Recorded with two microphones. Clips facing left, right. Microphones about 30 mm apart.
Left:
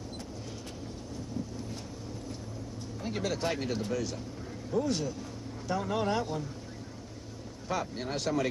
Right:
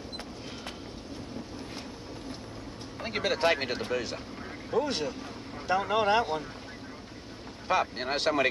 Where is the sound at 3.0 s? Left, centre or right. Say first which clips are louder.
Right 5 dB; right.